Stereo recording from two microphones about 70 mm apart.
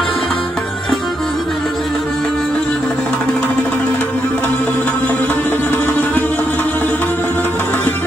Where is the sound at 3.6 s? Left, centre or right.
Left.